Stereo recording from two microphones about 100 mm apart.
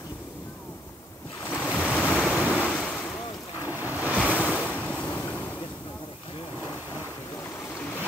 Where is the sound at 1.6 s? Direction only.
15° left (ahead or behind).